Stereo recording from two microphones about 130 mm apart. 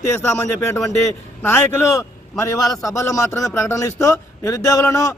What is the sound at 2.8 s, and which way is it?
A man's voice, 25° left (ahead or behind).